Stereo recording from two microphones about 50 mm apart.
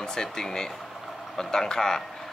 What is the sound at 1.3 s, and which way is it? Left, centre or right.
Speech, centre.